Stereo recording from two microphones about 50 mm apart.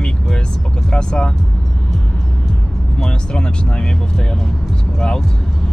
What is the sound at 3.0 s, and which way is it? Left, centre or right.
Speech, centre.